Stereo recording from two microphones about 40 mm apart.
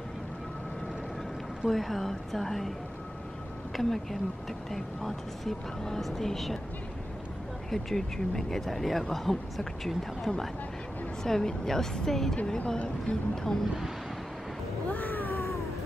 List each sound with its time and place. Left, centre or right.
1.7 s speech: centre
3.7 s speech: centre
7.7 s speech: centre
12.5 s speech: left
14.9 s cat: left